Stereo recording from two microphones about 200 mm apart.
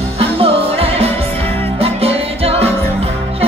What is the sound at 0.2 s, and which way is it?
Music, 30° right (ahead or behind).